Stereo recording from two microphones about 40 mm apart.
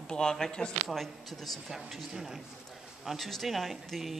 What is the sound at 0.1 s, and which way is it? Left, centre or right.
Speech, centre.